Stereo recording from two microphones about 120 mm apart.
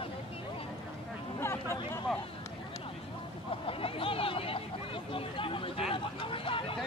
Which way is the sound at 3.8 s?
50° left (ahead or behind).